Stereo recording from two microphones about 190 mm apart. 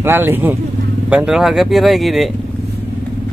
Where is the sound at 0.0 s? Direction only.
10° right (ahead or behind).